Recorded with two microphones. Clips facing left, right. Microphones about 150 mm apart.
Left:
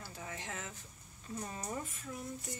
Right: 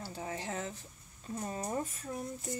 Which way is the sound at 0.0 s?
30° right (ahead or behind).